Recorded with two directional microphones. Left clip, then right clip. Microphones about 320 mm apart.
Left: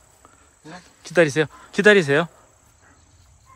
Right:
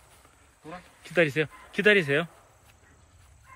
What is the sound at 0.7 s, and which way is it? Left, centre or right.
Speech, centre.